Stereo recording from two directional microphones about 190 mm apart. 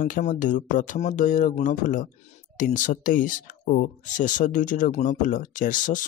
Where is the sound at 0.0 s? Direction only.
40° left (ahead or behind).